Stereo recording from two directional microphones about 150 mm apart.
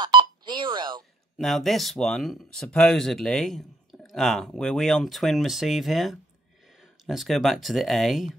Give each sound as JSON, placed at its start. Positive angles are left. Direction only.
{"t": 0.0, "sound": "telephone dialing", "side_deg": -30}
{"t": 1.4, "sound": "speech", "side_deg": 0}